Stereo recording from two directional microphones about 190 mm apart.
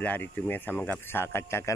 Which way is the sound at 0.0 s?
10° left (ahead or behind).